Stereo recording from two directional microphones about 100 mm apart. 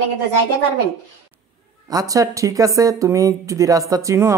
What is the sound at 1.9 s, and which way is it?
Speech, 35° right (ahead or behind).